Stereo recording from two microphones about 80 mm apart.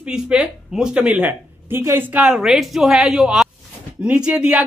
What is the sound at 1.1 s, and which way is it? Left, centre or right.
Speech, right.